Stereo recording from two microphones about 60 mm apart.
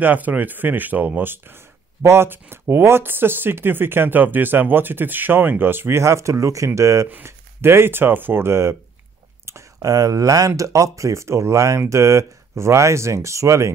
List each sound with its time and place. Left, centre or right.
0.0 s speech: right
2.0 s speech: right
7.2 s speech: right
9.8 s speech: right